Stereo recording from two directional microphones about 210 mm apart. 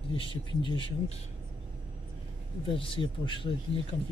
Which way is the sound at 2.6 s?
25° left (ahead or behind).